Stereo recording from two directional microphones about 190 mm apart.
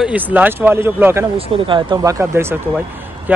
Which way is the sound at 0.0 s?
10° right (ahead or behind).